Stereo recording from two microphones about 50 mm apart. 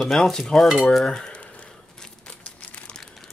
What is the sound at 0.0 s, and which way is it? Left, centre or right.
Stir, centre.